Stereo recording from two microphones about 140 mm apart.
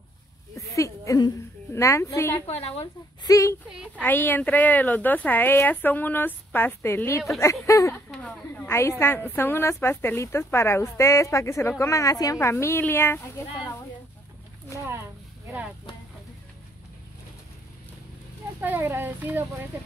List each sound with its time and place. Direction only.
0.6 s a woman's voice: 20° left (ahead or behind)
2.4 s a woman's voice: 45° left (ahead or behind)
3.3 s a woman's voice: 20° left (ahead or behind)
3.7 s a woman's voice: 5° right (ahead or behind)
4.0 s a woman's voice: 15° left (ahead or behind)
7.9 s a woman's voice: 5° left (ahead or behind)
18.6 s speech: 15° right (ahead or behind)